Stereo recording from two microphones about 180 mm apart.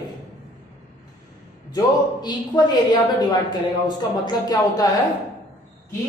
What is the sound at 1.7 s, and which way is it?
A man's voice, 20° left (ahead or behind).